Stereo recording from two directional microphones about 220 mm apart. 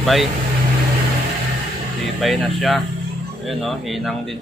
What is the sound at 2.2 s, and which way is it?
Speech, centre (ahead or behind).